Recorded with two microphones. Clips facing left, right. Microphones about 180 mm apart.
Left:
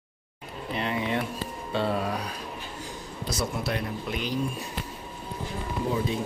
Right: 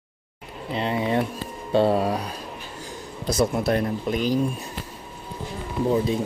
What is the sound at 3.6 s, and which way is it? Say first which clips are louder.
Speech: right 8 dB; 45° right (ahead or behind).